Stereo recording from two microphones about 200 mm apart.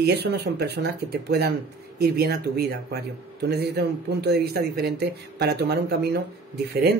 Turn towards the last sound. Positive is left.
turn(degrees=-55)  # may be behind; listen again after turning